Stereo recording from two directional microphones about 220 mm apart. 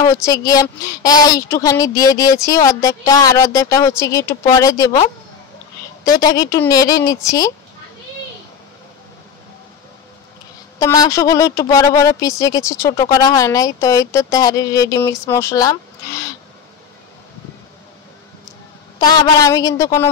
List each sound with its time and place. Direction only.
0.1 s speech: 15° left (ahead or behind)
6.0 s speech: 15° left (ahead or behind)
10.8 s speech: 15° left (ahead or behind)
18.9 s speech: 15° left (ahead or behind)